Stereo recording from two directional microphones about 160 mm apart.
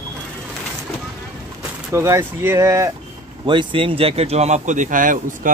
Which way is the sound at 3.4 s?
30° right (ahead or behind).